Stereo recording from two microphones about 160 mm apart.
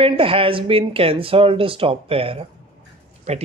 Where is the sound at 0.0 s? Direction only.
35° right (ahead or behind).